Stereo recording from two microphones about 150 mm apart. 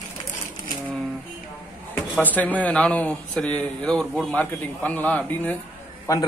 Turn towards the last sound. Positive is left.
turn(degrees=20)  # may be behind; listen again after turning